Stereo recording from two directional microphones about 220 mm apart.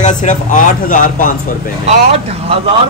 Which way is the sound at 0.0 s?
35° left (ahead or behind).